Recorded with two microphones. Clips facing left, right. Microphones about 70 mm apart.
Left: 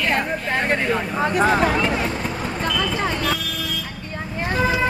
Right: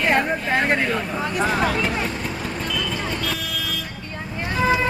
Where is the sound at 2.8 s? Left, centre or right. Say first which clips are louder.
Left 4 dB; left.